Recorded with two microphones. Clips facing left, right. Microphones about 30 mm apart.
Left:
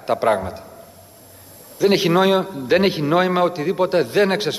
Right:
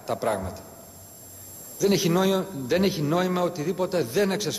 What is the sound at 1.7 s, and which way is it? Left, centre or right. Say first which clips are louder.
A man's voice: left 6 dB; left.